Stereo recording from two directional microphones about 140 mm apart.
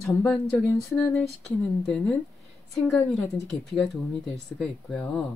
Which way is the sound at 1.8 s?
5° left (ahead or behind).